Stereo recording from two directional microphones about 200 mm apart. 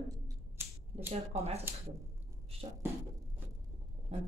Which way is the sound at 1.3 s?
30° right (ahead or behind).